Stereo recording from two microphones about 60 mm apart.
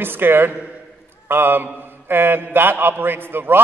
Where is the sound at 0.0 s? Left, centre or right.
Right.